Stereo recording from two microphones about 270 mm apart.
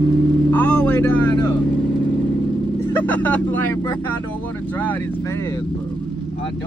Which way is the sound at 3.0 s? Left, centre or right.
Centre.